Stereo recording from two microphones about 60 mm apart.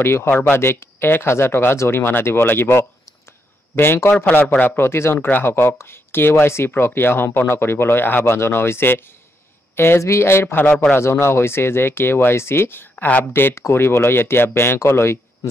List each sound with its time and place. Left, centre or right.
0.0 s speech: left
0.3 s speech: left
0.6 s speech: left
5.2 s speech: left
6.7 s speech: left
11.0 s speech: left
13.0 s speech: left
13.3 s speech: left